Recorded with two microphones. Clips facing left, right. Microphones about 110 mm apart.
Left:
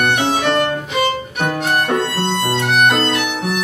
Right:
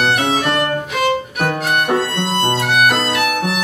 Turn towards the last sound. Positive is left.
turn(degrees=-5)  # may be behind; listen again after turning